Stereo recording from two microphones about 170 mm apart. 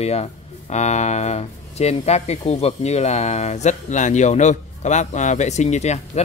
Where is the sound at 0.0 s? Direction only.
40° left (ahead or behind).